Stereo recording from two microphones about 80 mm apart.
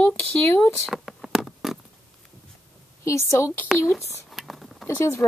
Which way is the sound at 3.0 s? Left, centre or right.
Left.